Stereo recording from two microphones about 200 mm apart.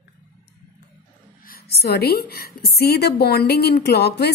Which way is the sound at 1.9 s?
55° left (ahead or behind).